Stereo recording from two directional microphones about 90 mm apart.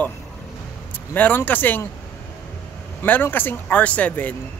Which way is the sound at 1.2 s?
20° left (ahead or behind).